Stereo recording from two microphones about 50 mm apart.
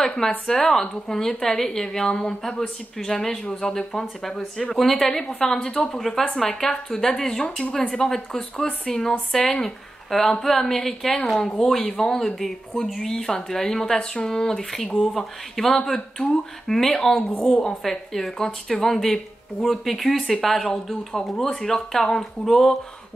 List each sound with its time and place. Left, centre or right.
0.0 s a woman's voice: centre
13.9 s speech: left
14.3 s speech: centre